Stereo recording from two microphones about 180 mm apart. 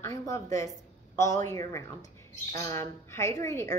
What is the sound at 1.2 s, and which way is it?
A woman's voice, 20° left (ahead or behind).